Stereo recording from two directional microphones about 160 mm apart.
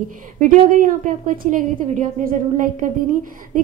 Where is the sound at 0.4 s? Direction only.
55° right (ahead or behind).